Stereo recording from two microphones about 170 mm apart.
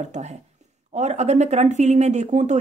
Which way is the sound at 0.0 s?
45° right (ahead or behind).